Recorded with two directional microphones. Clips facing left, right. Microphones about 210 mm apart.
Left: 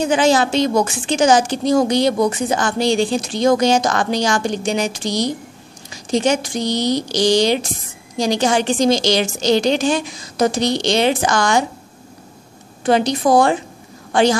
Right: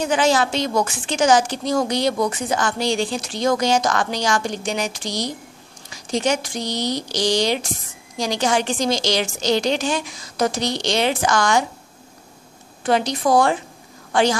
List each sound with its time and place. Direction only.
0.1 s a woman's voice: 25° left (ahead or behind)
12.8 s a woman's voice: 25° left (ahead or behind)